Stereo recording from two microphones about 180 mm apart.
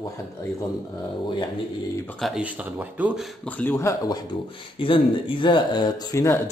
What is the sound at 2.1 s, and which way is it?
Speech, centre (ahead or behind).